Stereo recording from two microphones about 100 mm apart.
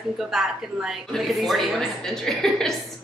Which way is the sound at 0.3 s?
5° right (ahead or behind).